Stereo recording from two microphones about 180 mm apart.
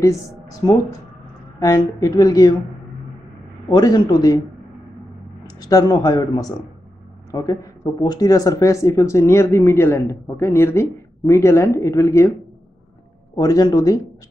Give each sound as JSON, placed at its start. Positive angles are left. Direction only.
{"t": 0.0, "sound": "a woman's voice", "side_deg": 20}
{"t": 3.6, "sound": "a woman's voice", "side_deg": 20}
{"t": 5.6, "sound": "a woman's voice", "side_deg": 20}
{"t": 13.4, "sound": "a woman's voice", "side_deg": 20}